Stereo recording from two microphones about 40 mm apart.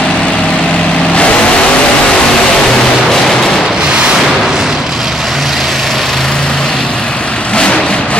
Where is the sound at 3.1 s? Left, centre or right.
Centre.